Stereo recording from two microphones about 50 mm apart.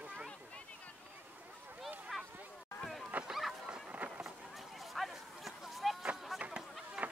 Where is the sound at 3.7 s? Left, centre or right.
Right.